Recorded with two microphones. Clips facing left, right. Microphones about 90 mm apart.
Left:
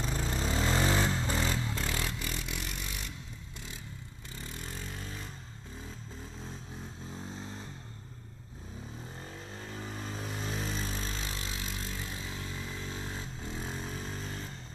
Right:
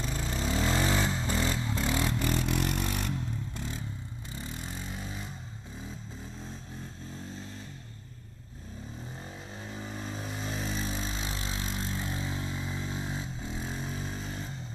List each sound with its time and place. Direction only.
0.0 s vehicle: centre (ahead or behind)
2.0 s vehicle: 30° right (ahead or behind)
2.2 s vehicle: 45° right (ahead or behind)
4.4 s vehicle: 15° right (ahead or behind)
9.7 s vehicle: 5° right (ahead or behind)